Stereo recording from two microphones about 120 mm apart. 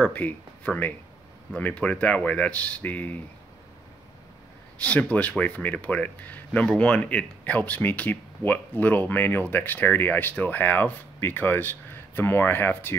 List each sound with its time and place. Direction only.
0.0 s speech: 15° left (ahead or behind)
4.8 s speech: 10° left (ahead or behind)